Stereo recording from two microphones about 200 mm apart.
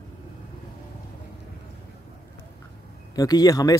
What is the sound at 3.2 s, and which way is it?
Speech, 20° left (ahead or behind).